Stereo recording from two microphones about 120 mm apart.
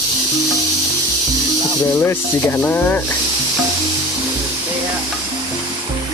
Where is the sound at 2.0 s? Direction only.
20° left (ahead or behind).